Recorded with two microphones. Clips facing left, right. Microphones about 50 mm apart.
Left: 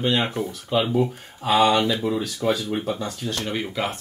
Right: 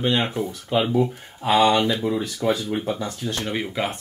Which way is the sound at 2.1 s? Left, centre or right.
Centre.